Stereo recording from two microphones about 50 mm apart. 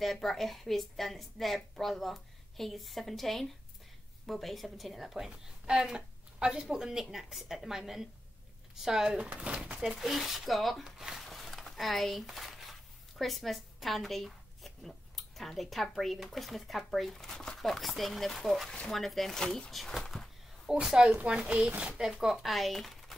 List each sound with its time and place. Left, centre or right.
0.0 s a woman's voice: centre
9.2 s speech: right
9.8 s a woman's voice: centre
19.4 s speech: centre
19.7 s a woman's voice: centre
20.8 s speech: centre